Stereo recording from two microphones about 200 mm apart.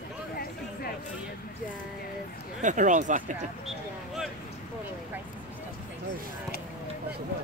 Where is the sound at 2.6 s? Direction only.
40° right (ahead or behind).